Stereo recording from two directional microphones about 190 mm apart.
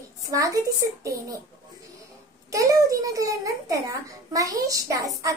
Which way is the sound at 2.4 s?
15° right (ahead or behind).